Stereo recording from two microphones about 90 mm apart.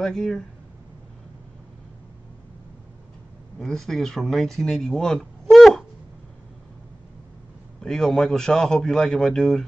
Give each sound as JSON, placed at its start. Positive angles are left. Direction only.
{"t": 0.0, "sound": "speech", "side_deg": 5}
{"t": 3.5, "sound": "speech", "side_deg": 5}
{"t": 7.8, "sound": "speech", "side_deg": 5}